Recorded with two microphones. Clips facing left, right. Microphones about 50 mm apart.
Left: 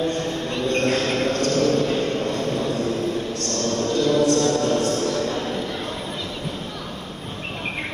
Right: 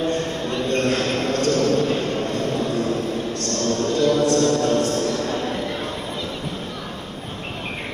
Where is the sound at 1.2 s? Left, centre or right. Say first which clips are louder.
Even; left.